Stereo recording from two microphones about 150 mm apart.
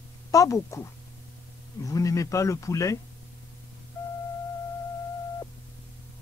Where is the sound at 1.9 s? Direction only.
20° left (ahead or behind).